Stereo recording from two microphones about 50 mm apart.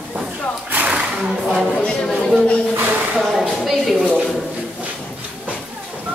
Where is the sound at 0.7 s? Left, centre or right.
Right.